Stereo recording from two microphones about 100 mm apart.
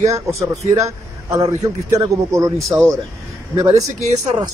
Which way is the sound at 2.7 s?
15° right (ahead or behind).